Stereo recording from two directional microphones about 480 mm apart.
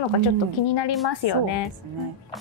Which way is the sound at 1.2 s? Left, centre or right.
Left.